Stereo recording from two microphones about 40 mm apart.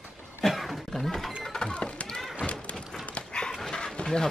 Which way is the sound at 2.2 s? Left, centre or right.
Centre.